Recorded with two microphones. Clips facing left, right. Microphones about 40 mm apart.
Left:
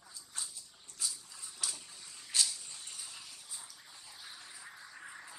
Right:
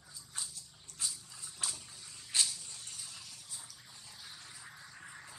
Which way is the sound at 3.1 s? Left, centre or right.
Centre.